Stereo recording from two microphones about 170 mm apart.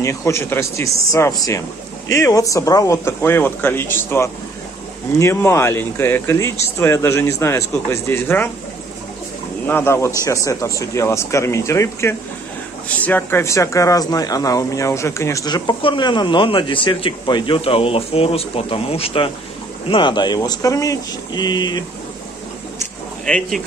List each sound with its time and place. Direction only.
0.0 s speech: 15° left (ahead or behind)
9.7 s speech: 15° left (ahead or behind)
23.2 s speech: 5° left (ahead or behind)